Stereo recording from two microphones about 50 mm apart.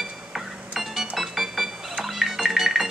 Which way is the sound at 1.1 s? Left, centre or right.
Centre.